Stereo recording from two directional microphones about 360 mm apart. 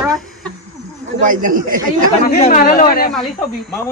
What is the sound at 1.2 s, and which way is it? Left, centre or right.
Speech, right.